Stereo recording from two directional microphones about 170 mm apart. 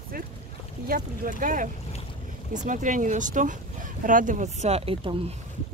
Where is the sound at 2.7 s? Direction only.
50° right (ahead or behind); by 5.2 s 30° right (ahead or behind).